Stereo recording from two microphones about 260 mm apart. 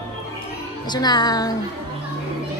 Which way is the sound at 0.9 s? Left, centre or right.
Centre.